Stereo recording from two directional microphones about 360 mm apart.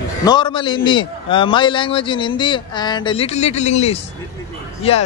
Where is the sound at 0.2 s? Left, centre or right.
Centre.